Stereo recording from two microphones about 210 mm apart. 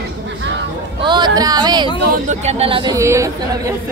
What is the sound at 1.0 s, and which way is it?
Speech, 20° right (ahead or behind).